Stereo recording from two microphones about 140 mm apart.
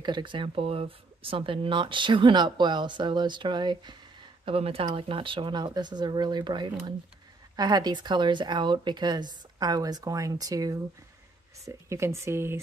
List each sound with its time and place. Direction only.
0.0 s speech: 35° right (ahead or behind)
4.5 s a woman's voice: 45° right (ahead or behind); by 12.5 s 20° right (ahead or behind)